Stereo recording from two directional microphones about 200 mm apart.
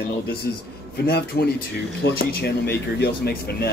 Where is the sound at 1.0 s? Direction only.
55° left (ahead or behind).